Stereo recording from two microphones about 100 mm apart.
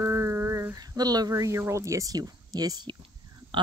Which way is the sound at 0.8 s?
40° right (ahead or behind).